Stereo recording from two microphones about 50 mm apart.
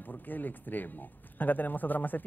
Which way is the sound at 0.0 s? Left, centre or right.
Left.